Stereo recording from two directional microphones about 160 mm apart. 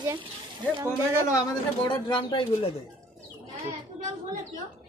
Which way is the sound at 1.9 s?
30° left (ahead or behind).